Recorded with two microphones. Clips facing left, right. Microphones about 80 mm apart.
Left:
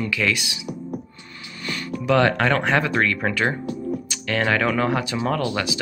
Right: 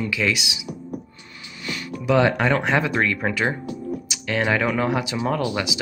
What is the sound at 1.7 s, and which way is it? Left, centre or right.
Speech, centre.